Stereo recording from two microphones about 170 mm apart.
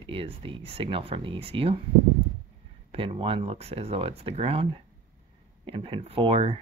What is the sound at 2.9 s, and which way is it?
Speech, 30° right (ahead or behind).